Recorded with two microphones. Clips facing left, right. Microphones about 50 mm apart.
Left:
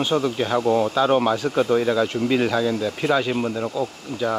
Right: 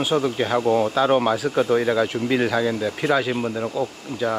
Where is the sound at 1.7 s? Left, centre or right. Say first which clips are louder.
Even; centre.